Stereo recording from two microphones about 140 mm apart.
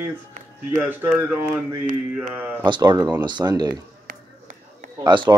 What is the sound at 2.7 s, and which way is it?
Speech, 30° right (ahead or behind).